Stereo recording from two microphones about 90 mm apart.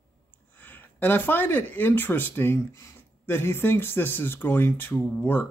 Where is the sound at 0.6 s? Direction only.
20° left (ahead or behind).